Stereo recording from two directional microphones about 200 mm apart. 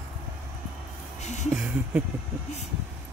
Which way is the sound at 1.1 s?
35° left (ahead or behind).